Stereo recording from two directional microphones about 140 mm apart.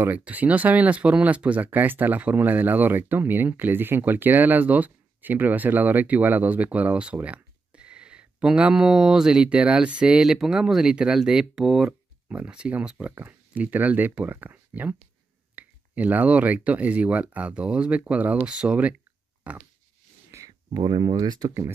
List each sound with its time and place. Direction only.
0.0 s speech: 15° right (ahead or behind)
20.2 s speech: 25° right (ahead or behind)